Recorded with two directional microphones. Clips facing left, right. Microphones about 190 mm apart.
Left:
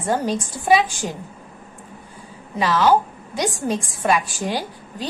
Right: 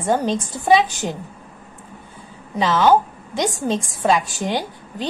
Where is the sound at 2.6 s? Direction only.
20° right (ahead or behind).